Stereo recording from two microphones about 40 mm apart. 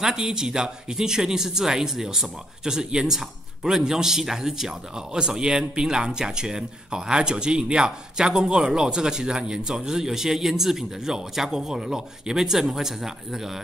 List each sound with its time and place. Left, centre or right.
0.0 s speech: centre